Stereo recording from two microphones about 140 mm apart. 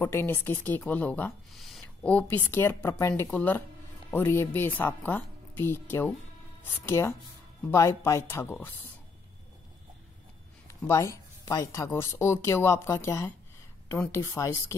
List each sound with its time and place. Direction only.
0.0 s speech: 15° left (ahead or behind)
1.5 s speech: centre (ahead or behind)
10.7 s speech: 20° left (ahead or behind)